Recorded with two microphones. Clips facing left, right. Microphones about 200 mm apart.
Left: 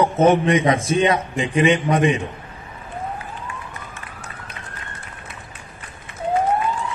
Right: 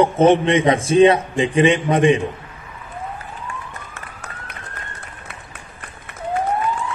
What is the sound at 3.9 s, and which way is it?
Police car, 65° right (ahead or behind).